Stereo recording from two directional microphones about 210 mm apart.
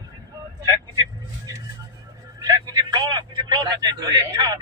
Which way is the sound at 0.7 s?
15° right (ahead or behind).